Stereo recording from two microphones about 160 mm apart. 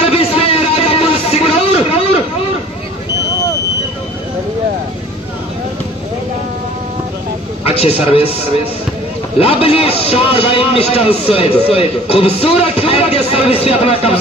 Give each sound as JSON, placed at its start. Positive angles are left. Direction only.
{"t": 0.0, "sound": "a sound", "side_deg": 40}
{"t": 7.6, "sound": "a man's voice", "side_deg": 40}
{"t": 9.4, "sound": "a man's voice", "side_deg": 35}